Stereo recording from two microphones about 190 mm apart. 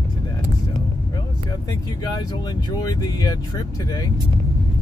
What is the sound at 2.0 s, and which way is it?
Speech, 20° left (ahead or behind).